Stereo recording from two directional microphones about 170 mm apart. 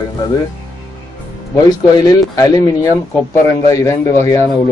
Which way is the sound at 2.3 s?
20° left (ahead or behind).